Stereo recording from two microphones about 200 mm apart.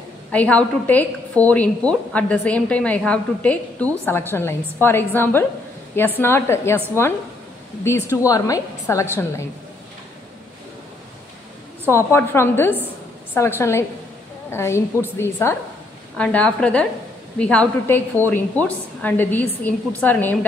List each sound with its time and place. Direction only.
0.3 s a woman's voice: 5° left (ahead or behind)
7.8 s a woman's voice: 15° left (ahead or behind)
11.9 s a woman's voice: 15° left (ahead or behind)